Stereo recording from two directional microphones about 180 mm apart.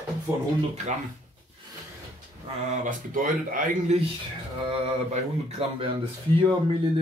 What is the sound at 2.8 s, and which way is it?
Speech, 50° right (ahead or behind).